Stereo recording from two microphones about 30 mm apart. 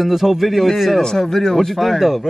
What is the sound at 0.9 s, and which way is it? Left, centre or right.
Speech, centre.